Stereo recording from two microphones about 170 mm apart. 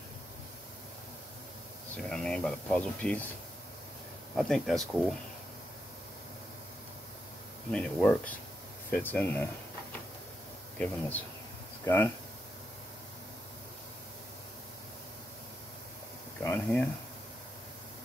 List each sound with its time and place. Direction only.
2.0 s speech: 5° left (ahead or behind)
4.4 s speech: centre (ahead or behind)
7.7 s speech: 5° left (ahead or behind)
10.8 s speech: 10° left (ahead or behind)
16.4 s speech: 10° left (ahead or behind)